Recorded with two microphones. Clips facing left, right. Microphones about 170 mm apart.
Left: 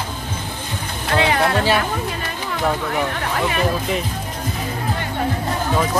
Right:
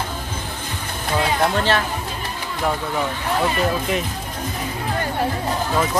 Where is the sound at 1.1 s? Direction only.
75° left (ahead or behind).